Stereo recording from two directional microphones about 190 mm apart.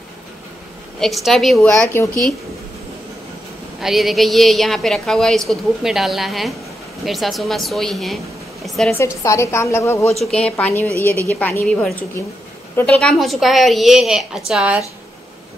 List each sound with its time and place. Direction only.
0.9 s a woman's voice: centre (ahead or behind)
3.8 s a woman's voice: centre (ahead or behind)
8.6 s a sound: centre (ahead or behind)
8.9 s a woman's voice: 15° left (ahead or behind)
13.0 s a woman's voice: centre (ahead or behind)